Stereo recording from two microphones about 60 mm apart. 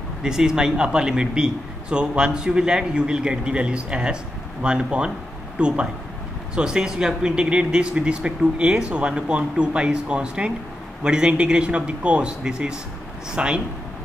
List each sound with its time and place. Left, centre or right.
0.2 s a man's voice: centre